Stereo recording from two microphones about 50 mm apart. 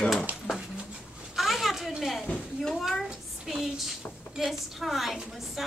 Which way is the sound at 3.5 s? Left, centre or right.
Centre.